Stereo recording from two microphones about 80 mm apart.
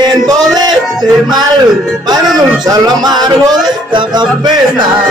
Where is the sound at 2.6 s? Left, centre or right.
Right.